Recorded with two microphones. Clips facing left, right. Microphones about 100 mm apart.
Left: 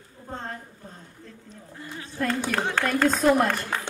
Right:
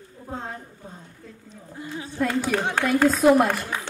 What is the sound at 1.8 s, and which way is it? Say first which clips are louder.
A woman's voice: right 4 dB; 15° right (ahead or behind).